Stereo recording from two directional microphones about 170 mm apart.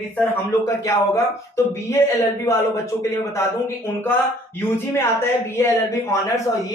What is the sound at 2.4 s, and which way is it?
Speech, 15° left (ahead or behind).